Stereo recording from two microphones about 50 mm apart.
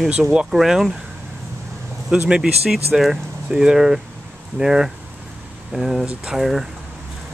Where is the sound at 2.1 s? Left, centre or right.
Centre.